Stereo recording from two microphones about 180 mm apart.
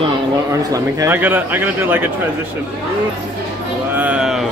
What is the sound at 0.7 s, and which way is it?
Speech, 15° right (ahead or behind).